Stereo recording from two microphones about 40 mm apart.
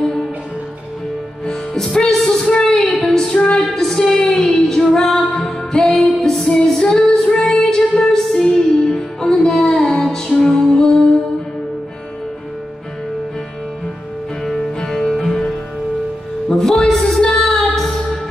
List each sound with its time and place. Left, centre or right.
1.4 s music: centre
3.0 s female singing: centre
3.5 s music: centre
7.2 s music: centre
14.4 s music: centre
16.4 s music: centre
16.9 s music: centre